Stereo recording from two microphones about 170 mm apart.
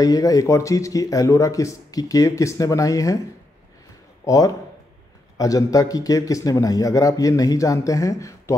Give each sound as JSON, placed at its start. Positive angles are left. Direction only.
{"t": 0.0, "sound": "a man's voice", "side_deg": 20}
{"t": 4.2, "sound": "a man's voice", "side_deg": 20}